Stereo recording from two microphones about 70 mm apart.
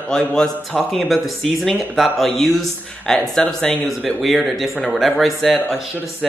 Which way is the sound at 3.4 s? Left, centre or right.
Centre.